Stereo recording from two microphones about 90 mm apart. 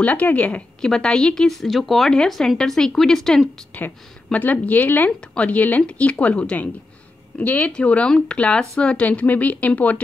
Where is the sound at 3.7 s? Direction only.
15° left (ahead or behind).